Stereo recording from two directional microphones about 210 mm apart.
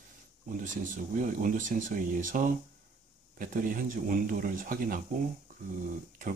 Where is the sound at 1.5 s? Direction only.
40° right (ahead or behind).